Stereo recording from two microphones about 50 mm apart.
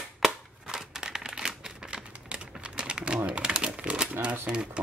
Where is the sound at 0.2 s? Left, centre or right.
Centre.